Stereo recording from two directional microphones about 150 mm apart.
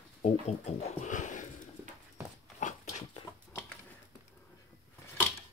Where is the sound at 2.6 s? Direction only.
55° left (ahead or behind).